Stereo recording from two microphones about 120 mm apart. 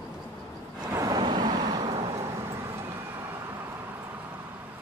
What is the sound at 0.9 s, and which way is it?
Vehicle, 30° right (ahead or behind).